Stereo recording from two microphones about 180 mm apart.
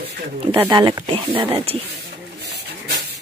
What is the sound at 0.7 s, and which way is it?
Speech, 20° right (ahead or behind).